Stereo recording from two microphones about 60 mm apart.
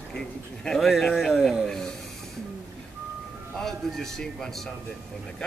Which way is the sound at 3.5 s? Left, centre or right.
Centre.